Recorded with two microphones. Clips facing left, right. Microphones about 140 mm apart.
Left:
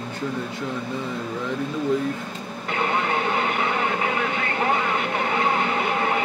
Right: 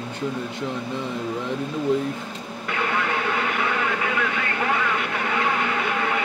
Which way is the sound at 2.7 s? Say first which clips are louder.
Left 2 dB; 30° left (ahead or behind).